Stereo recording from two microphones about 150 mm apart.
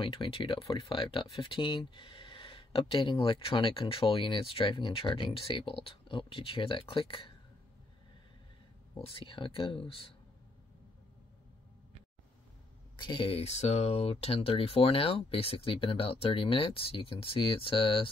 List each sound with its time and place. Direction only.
0.0 s speech: 35° left (ahead or behind)
8.9 s speech: 35° left (ahead or behind)
12.9 s speech: 30° left (ahead or behind)